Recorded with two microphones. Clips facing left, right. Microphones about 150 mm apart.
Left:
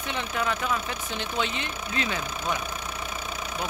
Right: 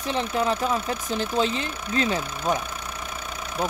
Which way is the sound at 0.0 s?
35° right (ahead or behind).